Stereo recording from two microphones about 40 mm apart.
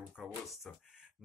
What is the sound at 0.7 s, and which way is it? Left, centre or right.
Speech, centre.